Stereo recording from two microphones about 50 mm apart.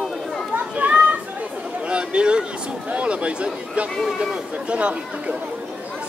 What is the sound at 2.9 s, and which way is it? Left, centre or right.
Speech, right.